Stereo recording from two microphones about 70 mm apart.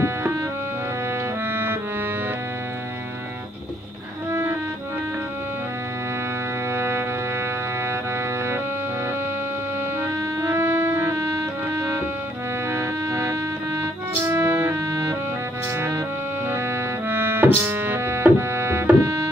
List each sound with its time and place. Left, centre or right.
1.5 s music: right
4.3 s music: right
6.7 s music: right
10.4 s music: right
17.1 s music: right
18.9 s tabla: right